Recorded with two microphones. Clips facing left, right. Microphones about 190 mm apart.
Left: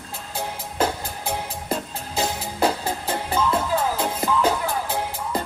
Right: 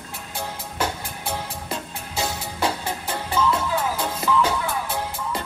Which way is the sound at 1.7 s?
30° left (ahead or behind).